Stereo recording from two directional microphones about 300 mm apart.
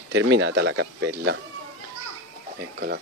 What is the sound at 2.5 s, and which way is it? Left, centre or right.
Speech, right.